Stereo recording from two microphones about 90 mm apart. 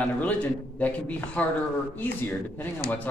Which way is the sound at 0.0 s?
15° left (ahead or behind).